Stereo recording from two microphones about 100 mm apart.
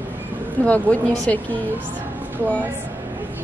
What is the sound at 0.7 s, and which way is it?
Speech, 15° left (ahead or behind).